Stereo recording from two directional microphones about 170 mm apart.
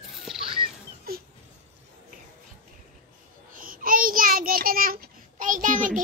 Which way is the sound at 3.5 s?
55° right (ahead or behind).